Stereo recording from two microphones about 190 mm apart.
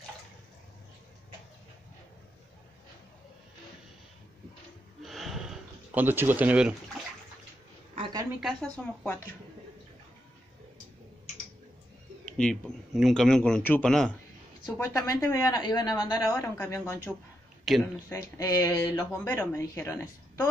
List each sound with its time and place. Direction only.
5.0 s a sound: centre (ahead or behind)
7.9 s a sound: 25° right (ahead or behind)
8.4 s speech: centre (ahead or behind)
12.3 s speech: 5° left (ahead or behind)
14.7 s a woman's voice: 15° left (ahead or behind)
17.7 s speech: centre (ahead or behind)
18.1 s speech: 20° left (ahead or behind)
19.1 s a woman's voice: 10° left (ahead or behind)